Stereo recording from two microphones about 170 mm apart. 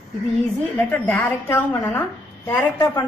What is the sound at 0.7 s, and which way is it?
A woman's voice, 10° left (ahead or behind).